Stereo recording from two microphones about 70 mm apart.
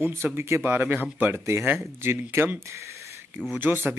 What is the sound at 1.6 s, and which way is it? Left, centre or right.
Speech, right.